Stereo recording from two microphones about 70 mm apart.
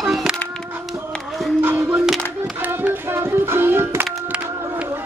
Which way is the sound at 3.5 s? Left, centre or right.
Right.